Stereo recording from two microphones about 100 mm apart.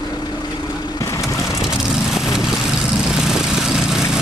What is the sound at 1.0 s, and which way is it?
Vehicle, 30° left (ahead or behind).